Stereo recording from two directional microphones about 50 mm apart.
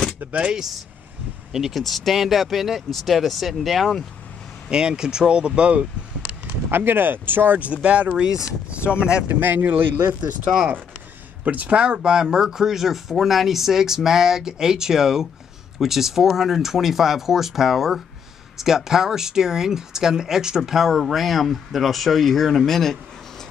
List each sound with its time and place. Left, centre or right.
0.3 s speech: right
1.5 s speech: centre
4.6 s speech: centre
6.7 s speech: right
7.6 s speech: right
8.1 s speech: centre
9.3 s speech: right
11.4 s speech: right
11.8 s speech: centre